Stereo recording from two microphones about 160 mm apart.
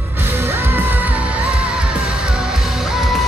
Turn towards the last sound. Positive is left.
turn(degrees=0)  # may be behind; listen again after turning